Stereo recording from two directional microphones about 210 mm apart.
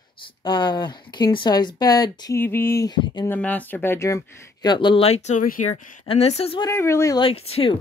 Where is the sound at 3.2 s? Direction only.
5° left (ahead or behind); by 6.7 s 25° left (ahead or behind).